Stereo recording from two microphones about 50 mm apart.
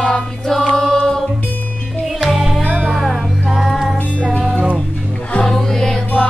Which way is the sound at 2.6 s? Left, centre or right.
Right.